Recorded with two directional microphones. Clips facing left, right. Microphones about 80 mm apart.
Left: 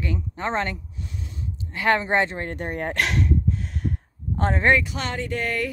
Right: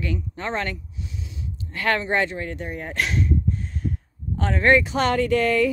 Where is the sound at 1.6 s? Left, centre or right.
Centre.